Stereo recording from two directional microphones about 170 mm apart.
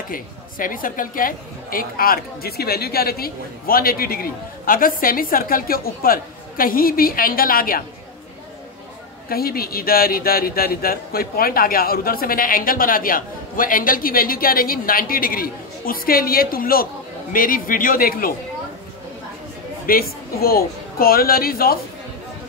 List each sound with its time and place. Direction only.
0.1 s speech: 55° left (ahead or behind)
9.3 s speech: 60° left (ahead or behind)
19.9 s speech: 60° left (ahead or behind)